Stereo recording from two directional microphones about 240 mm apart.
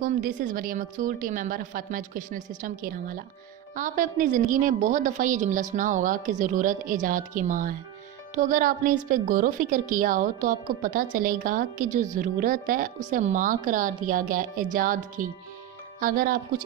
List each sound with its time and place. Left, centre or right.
0.0 s a woman's voice: right